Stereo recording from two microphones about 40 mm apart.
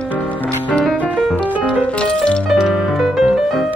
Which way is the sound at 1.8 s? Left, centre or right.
Left.